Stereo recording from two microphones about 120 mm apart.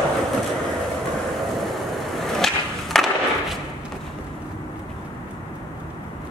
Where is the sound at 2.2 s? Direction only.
Centre (ahead or behind).